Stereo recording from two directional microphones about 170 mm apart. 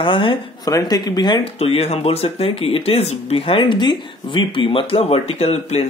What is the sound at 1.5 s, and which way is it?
Speech, 35° left (ahead or behind).